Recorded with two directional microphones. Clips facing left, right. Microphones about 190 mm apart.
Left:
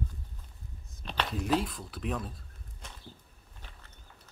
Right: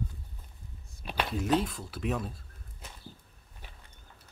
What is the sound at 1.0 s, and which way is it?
Speech, 10° right (ahead or behind).